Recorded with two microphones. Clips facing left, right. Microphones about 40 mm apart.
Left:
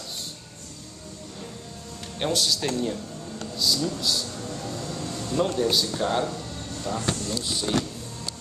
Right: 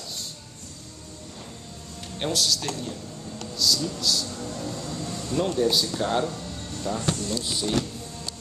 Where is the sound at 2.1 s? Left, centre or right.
Centre.